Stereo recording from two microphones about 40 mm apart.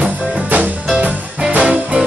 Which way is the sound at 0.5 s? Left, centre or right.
Right.